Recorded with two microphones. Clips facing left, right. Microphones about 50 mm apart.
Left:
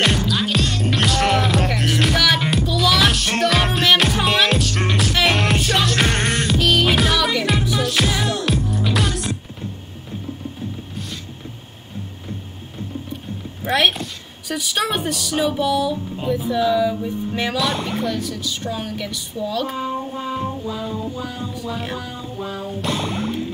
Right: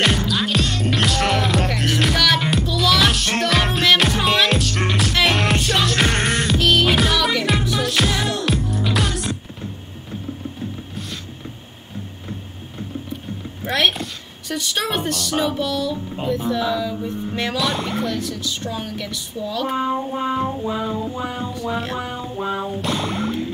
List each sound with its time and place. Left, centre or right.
0.0 s music: centre
13.7 s a sound: centre
14.5 s speech: centre
19.7 s music: right
22.8 s speech: centre